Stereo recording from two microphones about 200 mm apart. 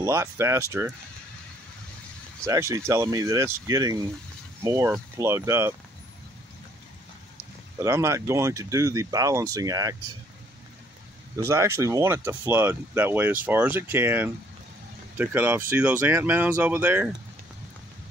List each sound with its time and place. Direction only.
0.0 s speech: 15° right (ahead or behind)
2.4 s speech: 15° right (ahead or behind)
7.8 s speech: 15° right (ahead or behind)
11.3 s speech: 15° right (ahead or behind)